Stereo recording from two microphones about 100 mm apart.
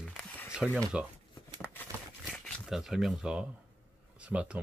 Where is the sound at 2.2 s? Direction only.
Centre (ahead or behind).